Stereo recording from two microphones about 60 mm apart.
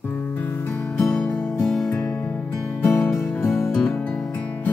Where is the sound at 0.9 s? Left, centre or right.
Centre.